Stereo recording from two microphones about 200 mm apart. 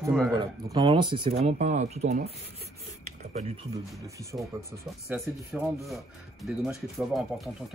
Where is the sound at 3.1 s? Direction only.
35° right (ahead or behind).